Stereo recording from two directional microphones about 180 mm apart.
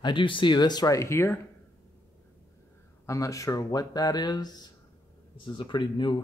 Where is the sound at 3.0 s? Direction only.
15° left (ahead or behind).